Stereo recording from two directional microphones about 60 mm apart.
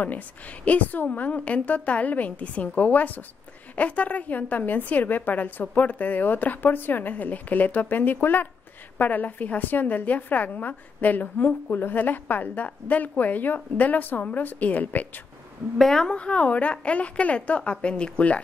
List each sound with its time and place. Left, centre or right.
0.0 s a woman's voice: left
15.8 s a woman's voice: centre